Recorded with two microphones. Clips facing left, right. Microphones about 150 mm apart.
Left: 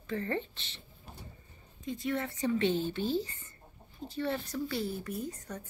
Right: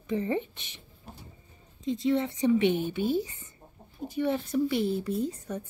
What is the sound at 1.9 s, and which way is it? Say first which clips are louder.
A woman's voice: right 7 dB; 25° right (ahead or behind).